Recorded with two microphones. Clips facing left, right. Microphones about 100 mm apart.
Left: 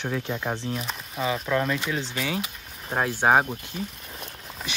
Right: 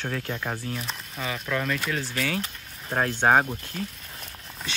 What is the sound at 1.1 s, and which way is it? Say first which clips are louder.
Speech: left 5 dB; 30° left (ahead or behind).